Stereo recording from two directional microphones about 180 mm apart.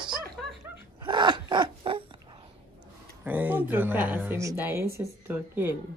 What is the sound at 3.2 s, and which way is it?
A woman's voice, 10° right (ahead or behind).